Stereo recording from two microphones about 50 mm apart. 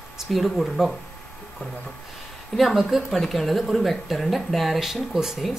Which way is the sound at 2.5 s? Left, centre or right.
Centre.